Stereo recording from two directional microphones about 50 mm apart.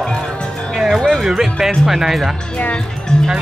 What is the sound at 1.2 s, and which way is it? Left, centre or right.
Speech, centre.